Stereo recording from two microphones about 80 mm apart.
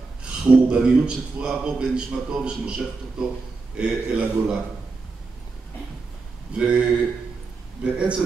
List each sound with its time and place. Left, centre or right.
0.2 s a man's voice: centre
6.5 s a man's voice: centre